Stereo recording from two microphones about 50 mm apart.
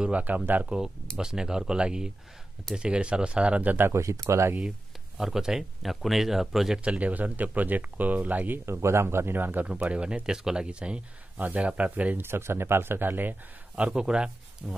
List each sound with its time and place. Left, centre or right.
0.0 s speech: right
0.7 s speech: centre
3.9 s speech: right
5.1 s speech: centre
6.8 s speech: right
8.6 s speech: right
9.7 s speech: right
11.3 s speech: right
12.2 s speech: right
13.7 s speech: centre